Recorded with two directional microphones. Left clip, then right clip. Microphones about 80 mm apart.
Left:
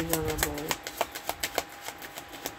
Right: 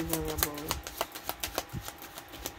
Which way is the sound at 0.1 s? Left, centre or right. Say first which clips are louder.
Left 4 dB; right.